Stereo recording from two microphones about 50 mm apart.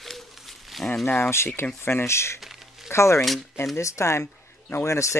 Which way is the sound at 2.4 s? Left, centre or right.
Centre.